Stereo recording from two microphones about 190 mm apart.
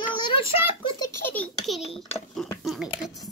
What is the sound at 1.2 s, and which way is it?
A child's voice, 10° left (ahead or behind).